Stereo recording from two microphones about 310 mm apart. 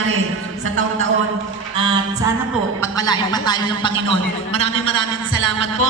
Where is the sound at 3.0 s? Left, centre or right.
Centre.